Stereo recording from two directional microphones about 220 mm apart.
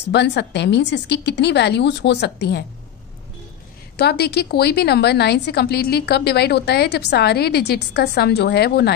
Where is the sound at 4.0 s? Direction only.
45° left (ahead or behind).